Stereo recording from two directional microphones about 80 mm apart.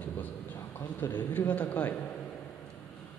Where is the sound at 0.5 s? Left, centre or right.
Left.